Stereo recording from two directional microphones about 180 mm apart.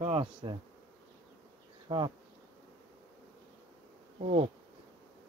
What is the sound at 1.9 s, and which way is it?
Bee, 25° right (ahead or behind).